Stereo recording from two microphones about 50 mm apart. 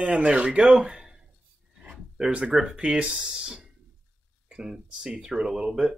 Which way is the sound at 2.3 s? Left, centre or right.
Right.